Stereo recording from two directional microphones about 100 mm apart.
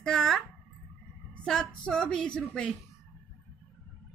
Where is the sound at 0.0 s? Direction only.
5° left (ahead or behind).